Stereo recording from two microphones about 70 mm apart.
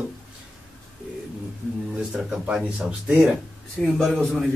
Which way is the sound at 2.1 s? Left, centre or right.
Centre.